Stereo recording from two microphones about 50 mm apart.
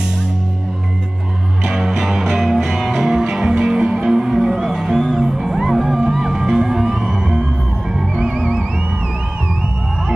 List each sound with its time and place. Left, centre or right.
1.6 s music: centre